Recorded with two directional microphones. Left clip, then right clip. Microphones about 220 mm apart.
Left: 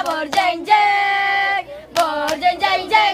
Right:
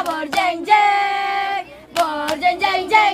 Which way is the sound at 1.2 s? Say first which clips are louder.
Left 3 dB; 15° right (ahead or behind).